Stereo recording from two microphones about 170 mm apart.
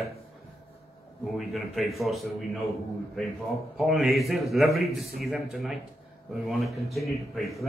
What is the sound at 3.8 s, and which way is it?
A man's voice, centre (ahead or behind).